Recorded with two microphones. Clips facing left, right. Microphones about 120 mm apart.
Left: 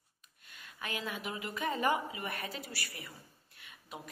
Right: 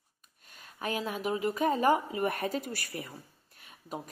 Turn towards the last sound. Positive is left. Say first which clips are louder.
# right 7 dB
turn(degrees=-40)  # may be behind; listen again after turning